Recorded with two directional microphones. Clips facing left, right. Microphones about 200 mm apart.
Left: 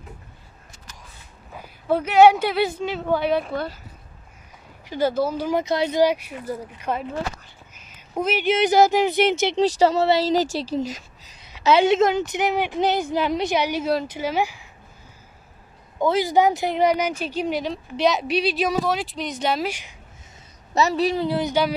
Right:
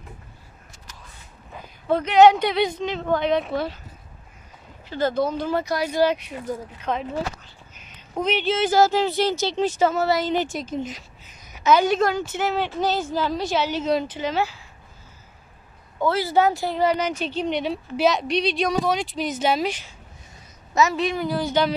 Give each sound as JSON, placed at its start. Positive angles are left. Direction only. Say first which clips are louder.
{"t": 1.5, "sound": "a woman's voice", "louder": "even", "side_deg": 10}
{"t": 4.8, "sound": "a woman's voice", "louder": "left 1 dB", "side_deg": 10}
{"t": 5.9, "sound": "a woman's voice", "louder": "even", "side_deg": 10}
{"t": 9.6, "sound": "speech", "louder": "left 3 dB", "side_deg": 35}
{"t": 11.4, "sound": "a woman's voice", "louder": "left 1 dB", "side_deg": 30}
{"t": 16.0, "sound": "a woman's voice", "louder": "left 1 dB", "side_deg": 15}
{"t": 19.7, "sound": "speech", "louder": "right 1 dB", "side_deg": 15}
{"t": 20.7, "sound": "speech", "louder": "left 1 dB", "side_deg": 35}
{"t": 21.5, "sound": "a woman's voice", "louder": "even", "side_deg": 10}